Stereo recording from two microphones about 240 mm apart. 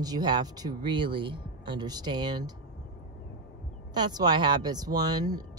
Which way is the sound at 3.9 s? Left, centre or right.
Centre.